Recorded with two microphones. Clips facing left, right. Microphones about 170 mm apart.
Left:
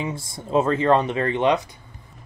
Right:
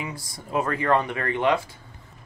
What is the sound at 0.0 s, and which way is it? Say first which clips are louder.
Speech: left 5 dB; 25° left (ahead or behind).